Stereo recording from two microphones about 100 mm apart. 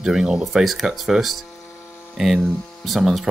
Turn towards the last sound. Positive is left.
turn(degrees=0)  # may be behind; listen again after turning